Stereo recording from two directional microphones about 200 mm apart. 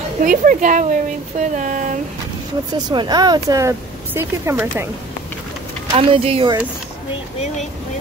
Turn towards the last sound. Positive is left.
turn(degrees=-25)  # may be behind; listen again after turning